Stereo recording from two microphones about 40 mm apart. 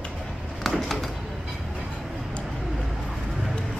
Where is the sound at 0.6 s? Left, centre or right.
Centre.